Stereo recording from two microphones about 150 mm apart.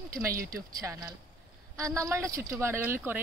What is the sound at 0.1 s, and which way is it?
A woman's voice, 20° right (ahead or behind).